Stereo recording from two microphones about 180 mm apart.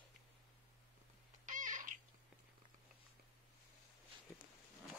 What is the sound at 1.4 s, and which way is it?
Babbling, 45° right (ahead or behind).